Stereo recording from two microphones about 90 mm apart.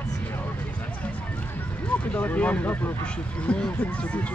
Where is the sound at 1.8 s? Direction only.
15° left (ahead or behind).